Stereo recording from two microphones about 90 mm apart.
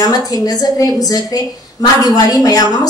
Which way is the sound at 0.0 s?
40° left (ahead or behind).